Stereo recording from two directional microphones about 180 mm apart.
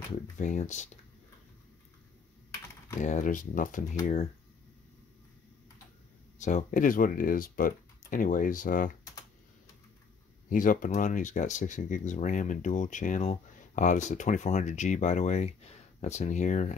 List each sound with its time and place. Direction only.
0.4 s speech: 45° left (ahead or behind)
3.0 s speech: 45° left (ahead or behind)
6.3 s speech: 45° left (ahead or behind)
10.5 s speech: 45° left (ahead or behind)